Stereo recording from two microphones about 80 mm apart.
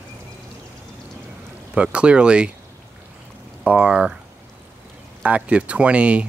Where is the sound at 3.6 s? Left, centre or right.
Centre.